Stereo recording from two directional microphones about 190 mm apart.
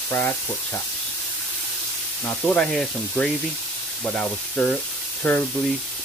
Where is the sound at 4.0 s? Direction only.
5° left (ahead or behind).